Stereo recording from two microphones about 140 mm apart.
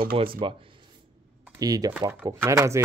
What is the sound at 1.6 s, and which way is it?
Speech, 25° right (ahead or behind).